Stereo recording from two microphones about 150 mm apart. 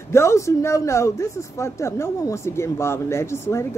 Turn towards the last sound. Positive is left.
turn(degrees=20)  # may be behind; listen again after turning